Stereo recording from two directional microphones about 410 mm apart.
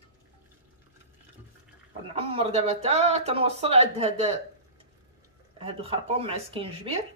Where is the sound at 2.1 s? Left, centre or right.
Centre.